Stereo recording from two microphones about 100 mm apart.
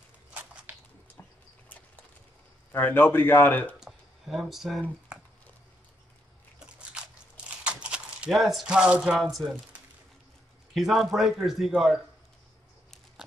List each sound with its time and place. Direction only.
2.7 s a man's voice: 20° left (ahead or behind)
3.8 s a sound: centre (ahead or behind)
6.6 s crunch: 10° right (ahead or behind)
7.6 s a sound: 10° right (ahead or behind)
9.2 s speech: centre (ahead or behind)
10.7 s speech: centre (ahead or behind)